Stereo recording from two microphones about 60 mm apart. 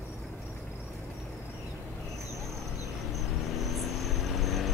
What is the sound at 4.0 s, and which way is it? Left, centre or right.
Vehicle, centre.